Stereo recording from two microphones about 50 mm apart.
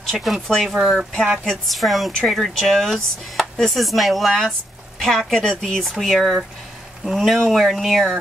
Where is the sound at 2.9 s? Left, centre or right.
Centre.